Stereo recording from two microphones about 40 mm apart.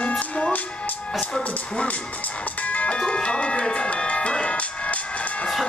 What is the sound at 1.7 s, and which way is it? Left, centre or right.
Music, left.